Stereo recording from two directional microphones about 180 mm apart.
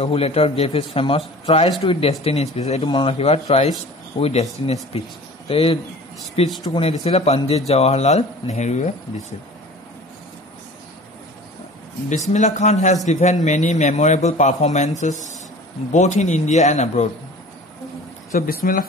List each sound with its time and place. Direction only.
0.0 s a man's voice: 35° left (ahead or behind)
12.1 s a man's voice: 40° left (ahead or behind)
18.3 s speech: 50° left (ahead or behind)